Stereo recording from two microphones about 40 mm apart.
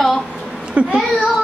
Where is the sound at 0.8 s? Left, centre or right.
Right.